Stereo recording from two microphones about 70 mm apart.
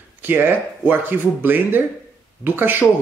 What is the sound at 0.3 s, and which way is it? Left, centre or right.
A man's voice, right.